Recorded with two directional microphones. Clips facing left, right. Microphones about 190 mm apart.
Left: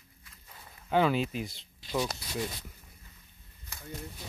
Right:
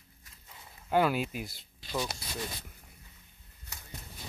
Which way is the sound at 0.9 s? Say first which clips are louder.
Left 1 dB; 5° right (ahead or behind).